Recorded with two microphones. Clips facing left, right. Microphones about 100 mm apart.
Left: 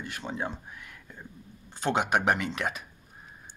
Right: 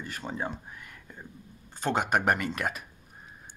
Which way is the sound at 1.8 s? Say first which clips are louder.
Left 1 dB; centre (ahead or behind).